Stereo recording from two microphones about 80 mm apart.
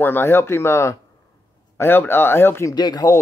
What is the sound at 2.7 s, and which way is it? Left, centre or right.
Speech, left.